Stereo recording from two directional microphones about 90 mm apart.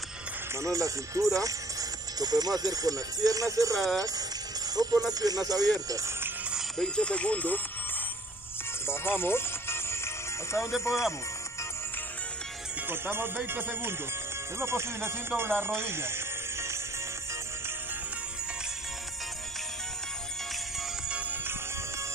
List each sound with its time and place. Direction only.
0.6 s speech: 35° right (ahead or behind)
6.8 s speech: 10° left (ahead or behind)
8.8 s music: 25° left (ahead or behind)
10.8 s speech: 30° left (ahead or behind)
12.8 s speech: 25° right (ahead or behind)
21.1 s music: 20° right (ahead or behind)